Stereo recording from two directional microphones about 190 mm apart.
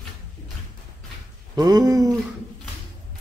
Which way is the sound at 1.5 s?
20° right (ahead or behind).